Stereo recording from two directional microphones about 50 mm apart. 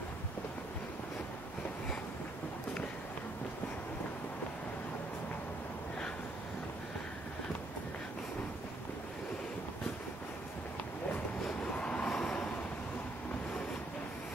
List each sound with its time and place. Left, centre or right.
11.7 s train: left